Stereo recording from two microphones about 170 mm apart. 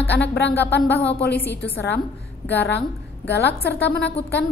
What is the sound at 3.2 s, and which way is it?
Speech, 85° left.